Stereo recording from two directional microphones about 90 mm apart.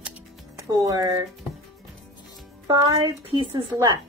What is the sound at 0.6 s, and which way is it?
Speech, 40° right (ahead or behind).